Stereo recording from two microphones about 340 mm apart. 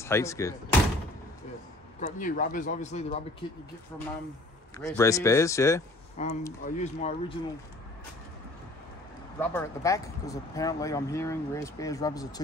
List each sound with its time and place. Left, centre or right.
0.0 s speech: centre
2.0 s speech: left
4.7 s speech: centre
6.2 s speech: centre
9.4 s speech: centre